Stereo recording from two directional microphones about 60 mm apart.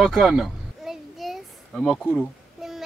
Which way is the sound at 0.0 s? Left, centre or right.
Centre.